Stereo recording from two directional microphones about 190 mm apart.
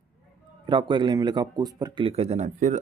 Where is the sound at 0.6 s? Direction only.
25° right (ahead or behind).